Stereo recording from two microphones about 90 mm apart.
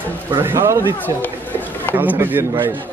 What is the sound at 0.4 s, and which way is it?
Speech, 25° right (ahead or behind).